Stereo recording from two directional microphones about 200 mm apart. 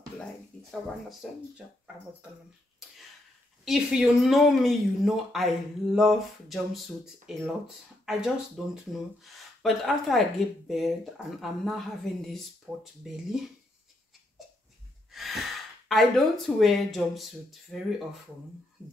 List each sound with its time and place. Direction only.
1.2 s speech: centre (ahead or behind)
3.6 s speech: centre (ahead or behind)
15.0 s speech: centre (ahead or behind)